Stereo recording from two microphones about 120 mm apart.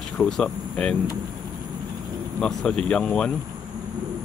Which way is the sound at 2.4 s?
5° left (ahead or behind).